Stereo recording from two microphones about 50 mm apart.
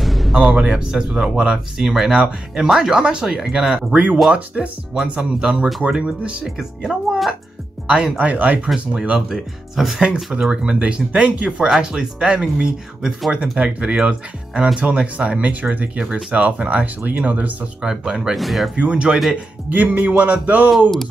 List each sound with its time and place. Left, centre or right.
0.0 s music: centre
0.4 s speech: right
6.4 s speech: centre
8.3 s speech: right
8.7 s speech: centre
9.3 s speech: centre
10.0 s speech: centre
11.7 s speech: centre; by 17.5 s right
17.8 s speech: centre
18.3 s speech: centre
18.8 s speech: right
19.7 s speech: right